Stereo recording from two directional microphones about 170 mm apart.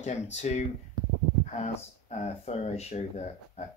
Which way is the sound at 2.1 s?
40° left (ahead or behind).